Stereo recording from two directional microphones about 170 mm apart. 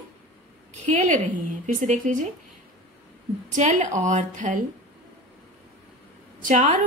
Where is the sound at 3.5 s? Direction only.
45° right (ahead or behind).